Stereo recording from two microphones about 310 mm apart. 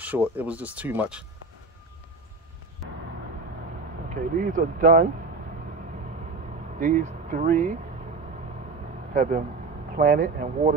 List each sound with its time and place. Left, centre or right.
0.0 s speech: centre
4.1 s speech: right
6.8 s speech: right
9.1 s speech: right